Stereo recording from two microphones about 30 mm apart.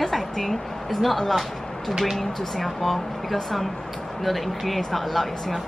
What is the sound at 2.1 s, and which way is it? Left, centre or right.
Speech, centre.